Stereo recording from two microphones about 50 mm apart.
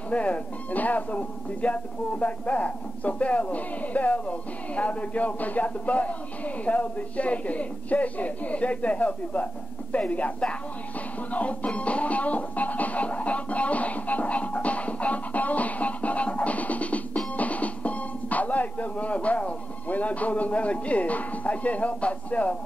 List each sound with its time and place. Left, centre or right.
0.1 s speech: left
11.3 s music: left
17.4 s speech: left